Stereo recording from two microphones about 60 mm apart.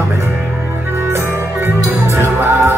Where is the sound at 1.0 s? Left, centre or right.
Right.